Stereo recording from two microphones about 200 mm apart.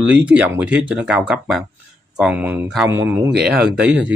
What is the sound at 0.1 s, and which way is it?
Speech, 5° right (ahead or behind).